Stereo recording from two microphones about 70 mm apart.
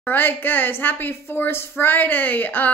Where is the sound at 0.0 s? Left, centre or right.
Left.